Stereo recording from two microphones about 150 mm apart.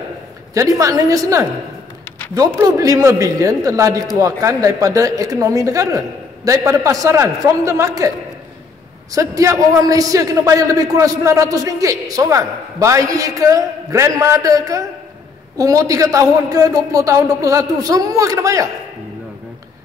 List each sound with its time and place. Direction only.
0.6 s a man's voice: 20° right (ahead or behind)
2.6 s a man's voice: 25° right (ahead or behind)
9.1 s a man's voice: 20° right (ahead or behind)